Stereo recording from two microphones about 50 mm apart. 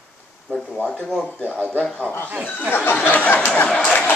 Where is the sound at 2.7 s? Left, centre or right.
Left.